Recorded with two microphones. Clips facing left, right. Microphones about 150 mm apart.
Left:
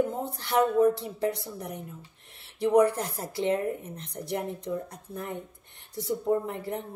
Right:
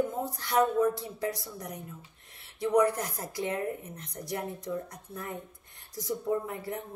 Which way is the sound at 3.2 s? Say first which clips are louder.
Left 7 dB; 25° left (ahead or behind).